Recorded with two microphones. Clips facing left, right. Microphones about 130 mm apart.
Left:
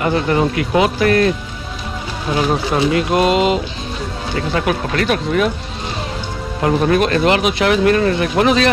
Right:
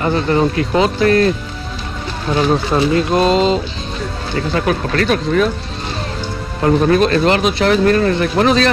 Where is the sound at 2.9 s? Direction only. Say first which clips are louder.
Right 1 dB; 30° right (ahead or behind).